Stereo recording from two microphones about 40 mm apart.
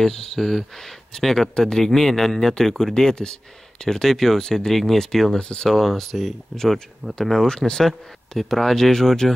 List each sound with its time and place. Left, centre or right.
0.0 s speech: centre
5.8 s speech: centre